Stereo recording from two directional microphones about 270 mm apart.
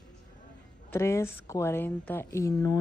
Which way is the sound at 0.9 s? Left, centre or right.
Centre.